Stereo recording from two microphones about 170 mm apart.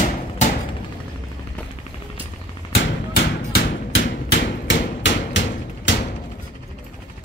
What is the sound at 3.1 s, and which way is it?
Hammer, 80° left.